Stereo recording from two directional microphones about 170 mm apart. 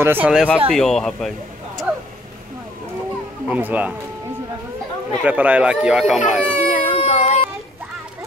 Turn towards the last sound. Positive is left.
turn(degrees=35)  # may be behind; listen again after turning